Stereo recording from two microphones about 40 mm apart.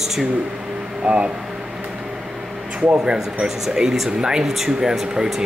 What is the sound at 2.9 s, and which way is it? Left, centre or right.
Speech, centre.